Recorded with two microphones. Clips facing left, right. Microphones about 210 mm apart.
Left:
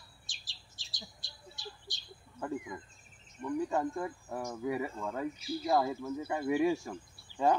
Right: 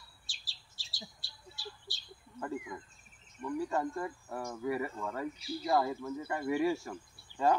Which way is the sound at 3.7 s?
15° left (ahead or behind).